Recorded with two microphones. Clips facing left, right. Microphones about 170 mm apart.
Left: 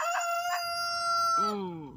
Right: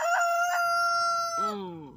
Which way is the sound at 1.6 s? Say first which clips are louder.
Left 1 dB; 5° left (ahead or behind).